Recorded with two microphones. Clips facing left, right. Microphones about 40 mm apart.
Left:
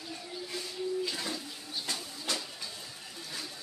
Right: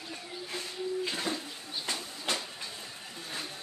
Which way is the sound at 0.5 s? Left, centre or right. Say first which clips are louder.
Even; right.